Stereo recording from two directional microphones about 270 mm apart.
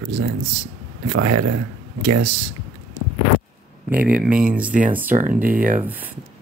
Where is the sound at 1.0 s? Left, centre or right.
Right.